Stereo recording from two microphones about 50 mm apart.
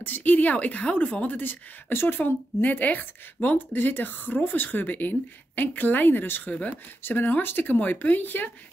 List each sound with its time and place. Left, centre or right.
0.0 s a woman's voice: left